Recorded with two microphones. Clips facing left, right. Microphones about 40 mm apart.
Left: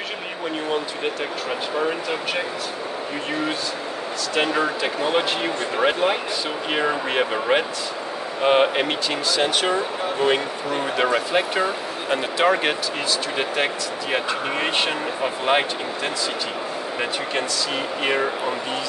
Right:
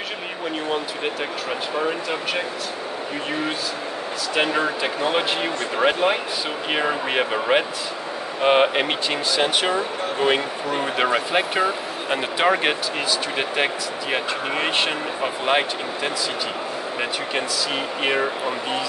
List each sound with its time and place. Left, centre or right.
1.8 s speech: centre
4.4 s speech: centre
14.1 s speech: centre
18.0 s speech: centre